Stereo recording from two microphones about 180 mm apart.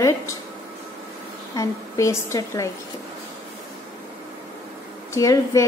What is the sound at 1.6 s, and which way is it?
A woman's voice, 15° left (ahead or behind).